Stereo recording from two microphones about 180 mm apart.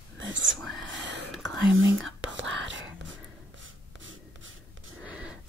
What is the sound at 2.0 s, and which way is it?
Whispering, 85° right.